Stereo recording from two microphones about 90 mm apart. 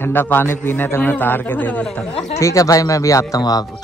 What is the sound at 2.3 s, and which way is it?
Speech, 40° left (ahead or behind).